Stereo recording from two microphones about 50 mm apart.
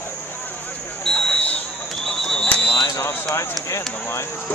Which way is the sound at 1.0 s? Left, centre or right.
Centre.